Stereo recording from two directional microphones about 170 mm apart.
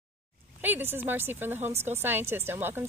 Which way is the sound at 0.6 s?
10° right (ahead or behind).